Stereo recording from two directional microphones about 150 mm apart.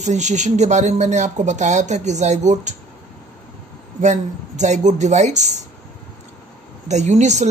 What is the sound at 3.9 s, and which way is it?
Speech, 50° right (ahead or behind).